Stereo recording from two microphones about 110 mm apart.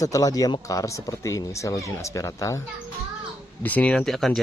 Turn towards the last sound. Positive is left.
turn(degrees=0)  # may be behind; listen again after turning